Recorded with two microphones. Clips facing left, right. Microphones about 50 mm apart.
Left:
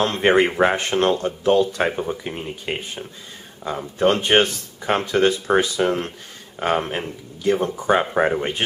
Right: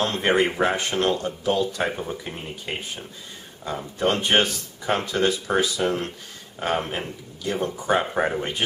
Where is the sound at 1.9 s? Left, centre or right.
Centre.